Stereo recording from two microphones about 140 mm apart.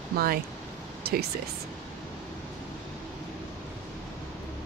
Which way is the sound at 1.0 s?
90° right.